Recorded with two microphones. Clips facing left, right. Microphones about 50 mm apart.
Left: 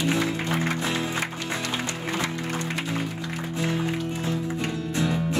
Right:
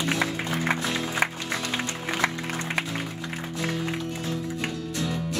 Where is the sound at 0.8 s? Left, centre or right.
Centre.